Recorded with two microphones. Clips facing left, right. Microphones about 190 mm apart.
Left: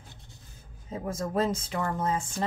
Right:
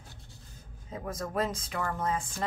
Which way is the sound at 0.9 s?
25° left (ahead or behind).